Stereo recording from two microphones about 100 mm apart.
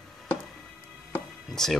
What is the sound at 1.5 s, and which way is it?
Speech, 5° left (ahead or behind).